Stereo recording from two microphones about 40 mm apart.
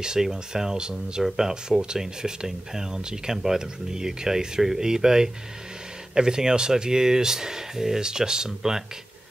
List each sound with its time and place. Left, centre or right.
0.0 s speech: centre